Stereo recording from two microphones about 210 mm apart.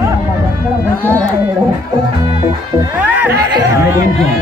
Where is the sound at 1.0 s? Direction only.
10° left (ahead or behind).